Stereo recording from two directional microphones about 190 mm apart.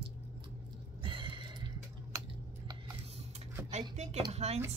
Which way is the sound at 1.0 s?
25° right (ahead or behind).